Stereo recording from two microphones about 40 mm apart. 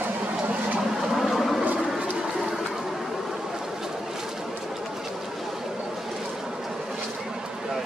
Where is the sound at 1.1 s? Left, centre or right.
Centre.